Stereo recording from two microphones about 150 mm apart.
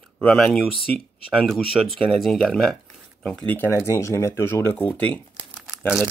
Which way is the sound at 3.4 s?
15° left (ahead or behind).